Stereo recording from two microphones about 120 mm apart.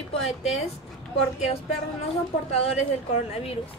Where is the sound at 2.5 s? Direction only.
65° left (ahead or behind).